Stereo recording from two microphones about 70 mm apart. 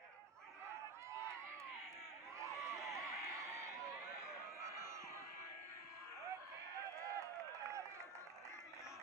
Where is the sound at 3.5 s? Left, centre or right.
Right.